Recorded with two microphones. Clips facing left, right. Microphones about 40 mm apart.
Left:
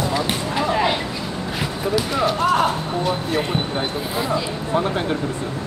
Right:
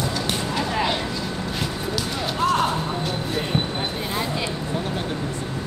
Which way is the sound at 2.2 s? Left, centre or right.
Centre.